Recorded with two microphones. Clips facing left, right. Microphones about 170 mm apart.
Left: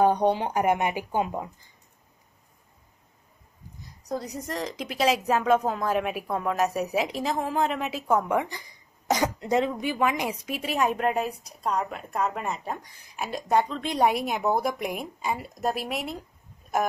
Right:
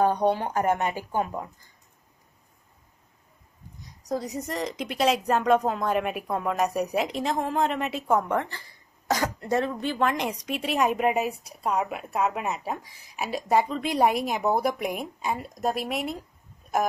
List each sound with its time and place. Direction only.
0.0 s speech: 20° left (ahead or behind)
3.8 s a woman's voice: centre (ahead or behind)
16.6 s a sound: centre (ahead or behind)